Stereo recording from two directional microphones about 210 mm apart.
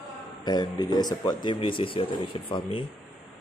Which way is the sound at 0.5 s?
20° left (ahead or behind).